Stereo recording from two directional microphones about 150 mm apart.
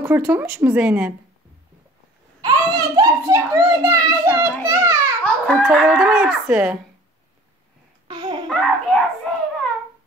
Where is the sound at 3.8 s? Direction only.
15° right (ahead or behind).